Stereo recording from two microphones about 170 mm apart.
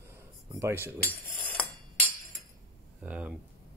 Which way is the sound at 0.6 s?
15° right (ahead or behind).